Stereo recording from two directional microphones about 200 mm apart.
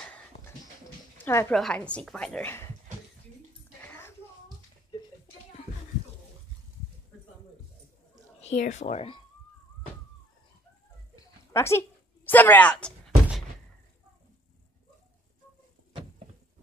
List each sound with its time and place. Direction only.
1.1 s a woman's voice: 10° left (ahead or behind)
8.4 s speech: 35° left (ahead or behind)
11.1 s dog: 15° left (ahead or behind)
12.3 s door: 10° left (ahead or behind)